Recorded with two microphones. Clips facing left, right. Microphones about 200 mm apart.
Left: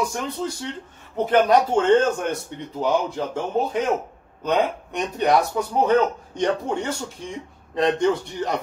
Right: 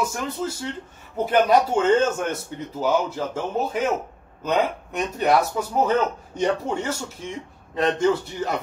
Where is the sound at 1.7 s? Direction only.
5° right (ahead or behind).